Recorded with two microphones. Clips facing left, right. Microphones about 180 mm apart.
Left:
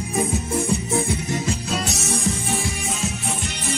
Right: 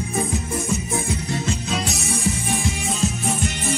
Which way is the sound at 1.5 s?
Centre (ahead or behind).